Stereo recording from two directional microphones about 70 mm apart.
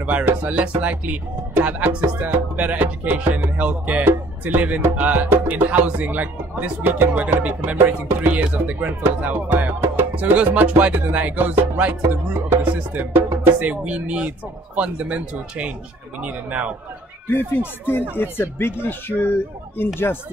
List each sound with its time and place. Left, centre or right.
0.0 s speech: right
17.3 s speech: left